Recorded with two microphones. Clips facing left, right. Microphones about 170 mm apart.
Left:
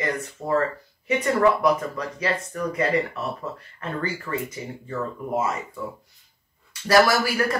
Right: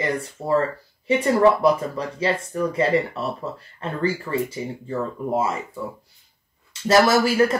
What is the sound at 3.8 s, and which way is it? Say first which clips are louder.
Speech: right 5 dB; 30° right (ahead or behind).